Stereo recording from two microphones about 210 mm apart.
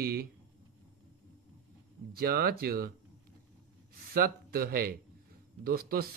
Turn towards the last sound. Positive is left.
turn(degrees=-45)  # may be behind; listen again after turning